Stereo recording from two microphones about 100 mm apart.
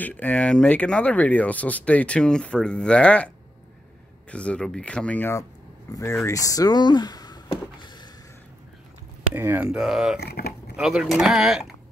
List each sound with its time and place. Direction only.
0.0 s speech: 15° left (ahead or behind)
4.3 s speech: 10° left (ahead or behind)
5.9 s speech: 30° left (ahead or behind)
9.3 s speech: 20° right (ahead or behind)
9.7 s speech: 5° right (ahead or behind)